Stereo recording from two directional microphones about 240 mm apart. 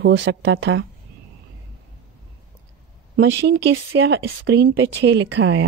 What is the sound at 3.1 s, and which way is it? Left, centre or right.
Speech, right.